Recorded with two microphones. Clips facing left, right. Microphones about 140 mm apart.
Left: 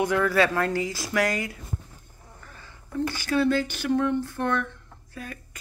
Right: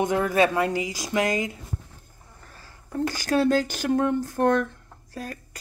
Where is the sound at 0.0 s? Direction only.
20° right (ahead or behind).